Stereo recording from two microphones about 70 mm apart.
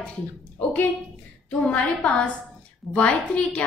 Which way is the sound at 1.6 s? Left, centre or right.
Centre.